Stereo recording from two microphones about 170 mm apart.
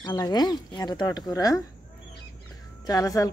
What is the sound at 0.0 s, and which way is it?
Speech, 25° left (ahead or behind).